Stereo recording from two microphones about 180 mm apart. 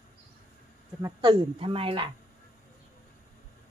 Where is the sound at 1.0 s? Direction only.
25° right (ahead or behind).